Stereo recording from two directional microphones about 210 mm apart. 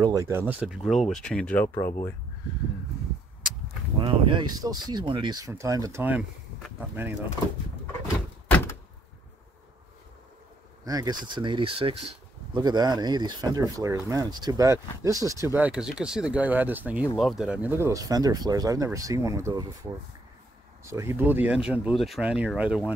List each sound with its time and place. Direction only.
0.0 s speech: 15° right (ahead or behind); by 2.0 s 10° left (ahead or behind)
4.0 s speech: 20° right (ahead or behind)
8.5 s door: 10° left (ahead or behind)
10.9 s speech: 20° right (ahead or behind)